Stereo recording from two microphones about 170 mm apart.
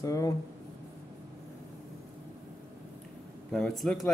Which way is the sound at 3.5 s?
Centre (ahead or behind).